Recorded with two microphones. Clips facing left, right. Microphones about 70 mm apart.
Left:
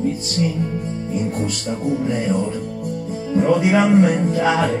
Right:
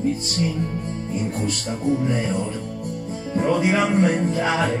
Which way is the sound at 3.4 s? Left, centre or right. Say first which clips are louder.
Left 3 dB; centre.